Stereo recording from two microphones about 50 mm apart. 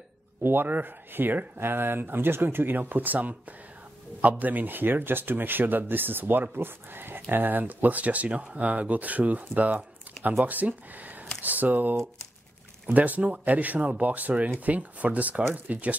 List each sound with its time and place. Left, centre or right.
0.4 s speech: right